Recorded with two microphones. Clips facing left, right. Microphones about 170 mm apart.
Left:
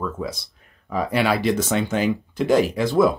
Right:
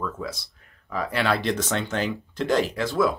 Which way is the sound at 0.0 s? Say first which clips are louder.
Left 3 dB; 15° left (ahead or behind).